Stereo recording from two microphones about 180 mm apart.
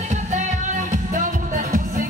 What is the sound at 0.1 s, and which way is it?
Music, 40° right (ahead or behind).